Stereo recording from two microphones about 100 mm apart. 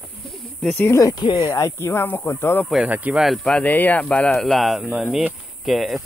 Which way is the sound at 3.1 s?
Centre (ahead or behind).